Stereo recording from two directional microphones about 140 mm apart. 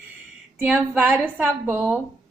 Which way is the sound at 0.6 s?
10° right (ahead or behind).